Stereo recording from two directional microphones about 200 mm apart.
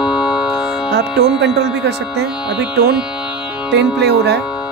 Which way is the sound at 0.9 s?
55° right (ahead or behind).